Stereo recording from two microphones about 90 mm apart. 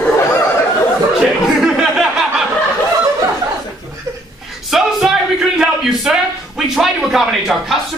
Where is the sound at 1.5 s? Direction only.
5° right (ahead or behind).